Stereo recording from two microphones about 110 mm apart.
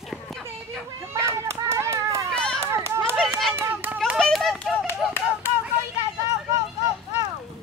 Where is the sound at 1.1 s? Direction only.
25° right (ahead or behind).